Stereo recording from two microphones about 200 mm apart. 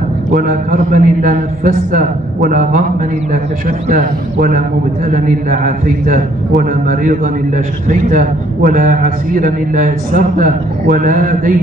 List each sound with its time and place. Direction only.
0.3 s a man's voice: 45° right (ahead or behind)